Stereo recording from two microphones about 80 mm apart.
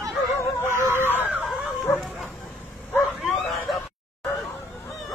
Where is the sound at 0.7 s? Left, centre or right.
Right.